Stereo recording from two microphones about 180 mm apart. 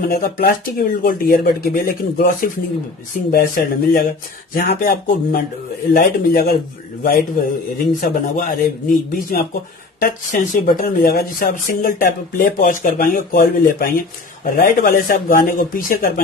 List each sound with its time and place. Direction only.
0.1 s a man's voice: 55° left (ahead or behind)